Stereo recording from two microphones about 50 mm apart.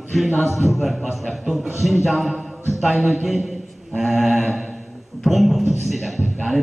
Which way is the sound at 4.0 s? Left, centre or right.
Centre.